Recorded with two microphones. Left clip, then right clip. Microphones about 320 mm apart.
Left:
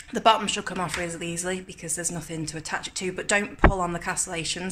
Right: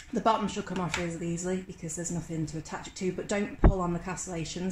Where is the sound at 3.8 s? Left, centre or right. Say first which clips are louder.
Left 6 dB; left.